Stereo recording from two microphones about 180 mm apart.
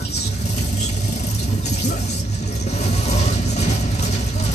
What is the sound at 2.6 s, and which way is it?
Vehicle, 40° left (ahead or behind).